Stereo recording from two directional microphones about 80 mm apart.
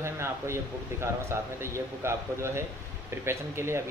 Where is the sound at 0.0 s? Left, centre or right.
Right.